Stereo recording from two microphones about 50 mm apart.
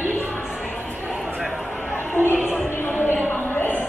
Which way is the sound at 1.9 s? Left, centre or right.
Left.